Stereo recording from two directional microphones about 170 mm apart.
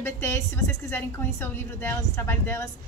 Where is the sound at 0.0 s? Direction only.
15° left (ahead or behind).